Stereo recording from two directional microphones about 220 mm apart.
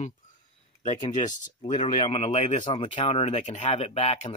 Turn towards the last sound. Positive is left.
turn(degrees=30)  # may be behind; listen again after turning